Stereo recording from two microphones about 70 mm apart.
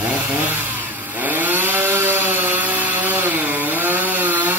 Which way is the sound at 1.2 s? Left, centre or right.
Right.